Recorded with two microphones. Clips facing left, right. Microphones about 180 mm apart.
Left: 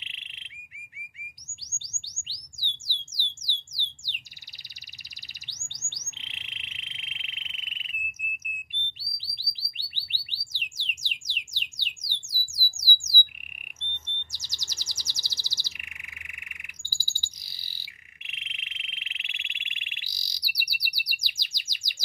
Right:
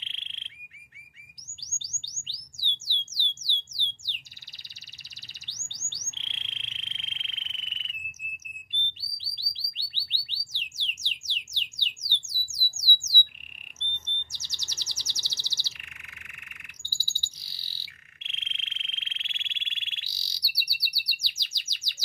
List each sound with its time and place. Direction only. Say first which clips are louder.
0.0 s bird: even; 15° left (ahead or behind)
1.7 s bird: right 2 dB; 10° left (ahead or behind)
3.4 s a sound: right 1 dB; 15° left (ahead or behind)
5.5 s bird: right 1 dB; 15° left (ahead or behind)
9.1 s bird: left 1 dB; 15° left (ahead or behind)
10.8 s music: even; 15° left (ahead or behind)
12.9 s squawk: left 1 dB; 55° right (ahead or behind)
13.7 s chirp: right 3 dB; 15° left (ahead or behind)